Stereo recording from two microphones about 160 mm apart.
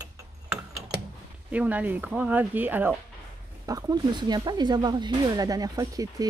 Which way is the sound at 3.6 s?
20° right (ahead or behind).